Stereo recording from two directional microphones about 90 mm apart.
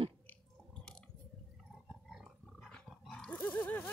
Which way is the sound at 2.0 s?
5° right (ahead or behind).